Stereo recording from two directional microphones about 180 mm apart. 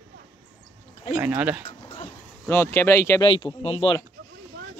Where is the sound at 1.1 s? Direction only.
10° right (ahead or behind).